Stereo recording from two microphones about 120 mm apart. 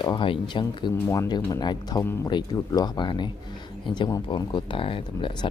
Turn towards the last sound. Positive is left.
turn(degrees=45)  # may be behind; listen again after turning